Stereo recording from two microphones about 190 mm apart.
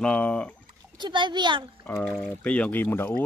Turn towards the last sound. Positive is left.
turn(degrees=10)  # may be behind; listen again after turning